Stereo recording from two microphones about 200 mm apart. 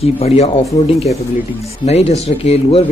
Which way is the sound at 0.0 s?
30° left (ahead or behind).